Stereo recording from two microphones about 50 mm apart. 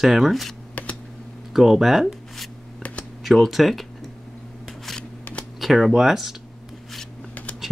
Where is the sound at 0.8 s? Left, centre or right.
Left.